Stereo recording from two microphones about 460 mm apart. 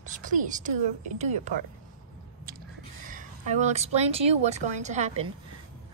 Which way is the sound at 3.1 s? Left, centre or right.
Centre.